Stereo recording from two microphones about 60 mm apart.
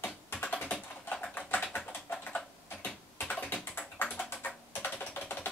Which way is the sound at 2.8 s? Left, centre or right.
Left.